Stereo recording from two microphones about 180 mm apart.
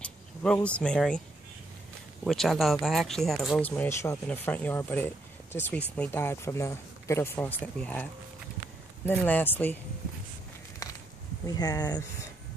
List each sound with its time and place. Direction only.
0.0 s speech: 5° left (ahead or behind)
2.2 s speech: centre (ahead or behind)
11.4 s speech: 20° left (ahead or behind)